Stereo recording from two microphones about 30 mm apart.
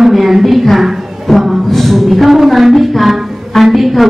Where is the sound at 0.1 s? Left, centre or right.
Centre.